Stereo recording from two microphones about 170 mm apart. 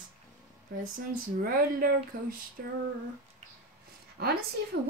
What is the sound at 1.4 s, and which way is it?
Speech, 60° right (ahead or behind).